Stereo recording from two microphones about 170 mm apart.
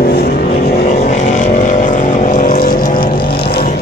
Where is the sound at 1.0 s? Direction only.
45° left (ahead or behind).